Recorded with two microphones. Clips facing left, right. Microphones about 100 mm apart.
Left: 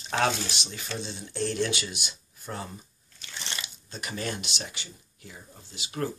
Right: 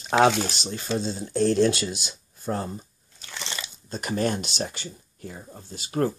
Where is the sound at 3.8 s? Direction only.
40° right (ahead or behind).